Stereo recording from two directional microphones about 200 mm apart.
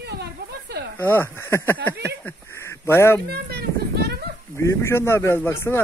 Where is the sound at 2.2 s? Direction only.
10° left (ahead or behind).